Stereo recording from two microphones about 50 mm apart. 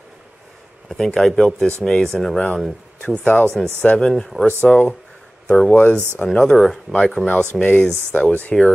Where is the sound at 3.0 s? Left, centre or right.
Left.